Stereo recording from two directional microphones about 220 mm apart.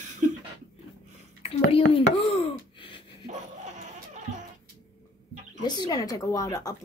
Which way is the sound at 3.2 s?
30° right (ahead or behind).